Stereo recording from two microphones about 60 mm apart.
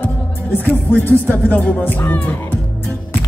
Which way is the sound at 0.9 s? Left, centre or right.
Left.